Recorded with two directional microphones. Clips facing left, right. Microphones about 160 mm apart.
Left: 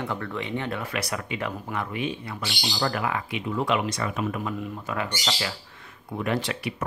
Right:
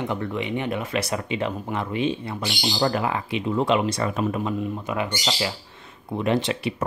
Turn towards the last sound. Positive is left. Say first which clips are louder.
# right 4 dB
turn(degrees=-25)  # may be behind; listen again after turning